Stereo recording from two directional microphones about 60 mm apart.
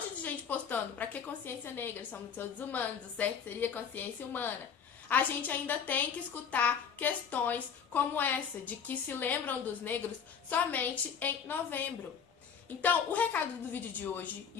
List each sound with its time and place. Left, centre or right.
0.2 s a woman's voice: left